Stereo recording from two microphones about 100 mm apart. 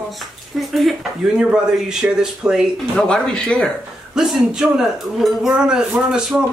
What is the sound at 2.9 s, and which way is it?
Speech, 5° left (ahead or behind).